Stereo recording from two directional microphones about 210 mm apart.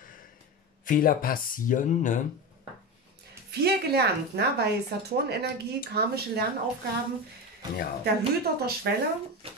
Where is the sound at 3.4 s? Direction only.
50° right (ahead or behind).